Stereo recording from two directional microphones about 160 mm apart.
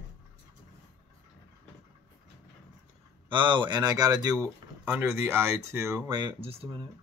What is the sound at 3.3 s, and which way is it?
Speech, 30° right (ahead or behind).